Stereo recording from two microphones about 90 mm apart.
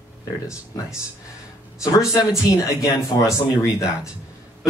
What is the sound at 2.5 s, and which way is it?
Speech, 35° left (ahead or behind).